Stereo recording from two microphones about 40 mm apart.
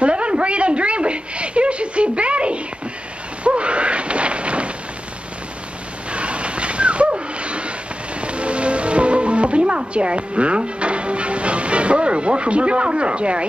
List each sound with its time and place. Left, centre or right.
0.0 s a sound: right
6.1 s dog: right
8.2 s music: right